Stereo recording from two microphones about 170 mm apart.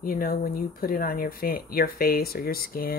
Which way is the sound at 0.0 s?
55° left (ahead or behind).